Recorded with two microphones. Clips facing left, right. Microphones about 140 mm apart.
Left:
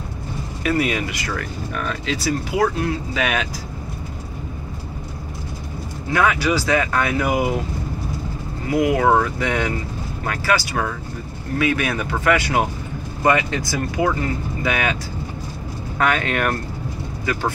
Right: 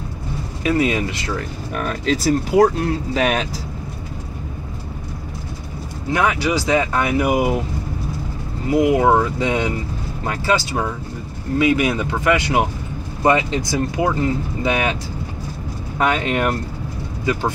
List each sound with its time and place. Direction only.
0.7 s speech: 25° right (ahead or behind)
1.7 s speech: 45° right (ahead or behind)
6.1 s speech: 20° right (ahead or behind)
8.6 s speech: 20° right (ahead or behind)
16.0 s speech: 20° right (ahead or behind)